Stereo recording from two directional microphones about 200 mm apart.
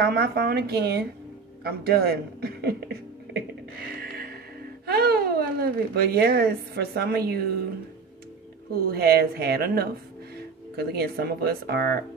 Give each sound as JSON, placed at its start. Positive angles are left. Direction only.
{"t": 0.0, "sound": "speech", "side_deg": -50}
{"t": 4.0, "sound": "music", "side_deg": -50}
{"t": 4.8, "sound": "speech", "side_deg": -50}
{"t": 8.7, "sound": "speech", "side_deg": -50}